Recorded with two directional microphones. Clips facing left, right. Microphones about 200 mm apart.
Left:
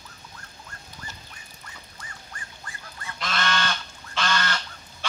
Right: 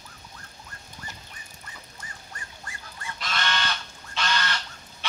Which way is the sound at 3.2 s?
50° left (ahead or behind).